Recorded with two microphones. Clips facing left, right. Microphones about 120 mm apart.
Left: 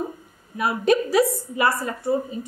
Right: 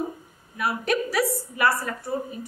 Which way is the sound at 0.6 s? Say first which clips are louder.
Left 5 dB; 25° left (ahead or behind).